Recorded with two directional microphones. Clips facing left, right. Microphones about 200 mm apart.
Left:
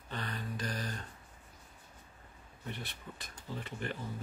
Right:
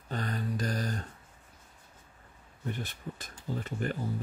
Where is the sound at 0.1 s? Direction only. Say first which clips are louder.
Right 6 dB; 45° right (ahead or behind).